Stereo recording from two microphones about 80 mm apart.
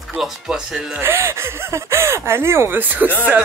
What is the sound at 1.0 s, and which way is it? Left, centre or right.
Speech, right.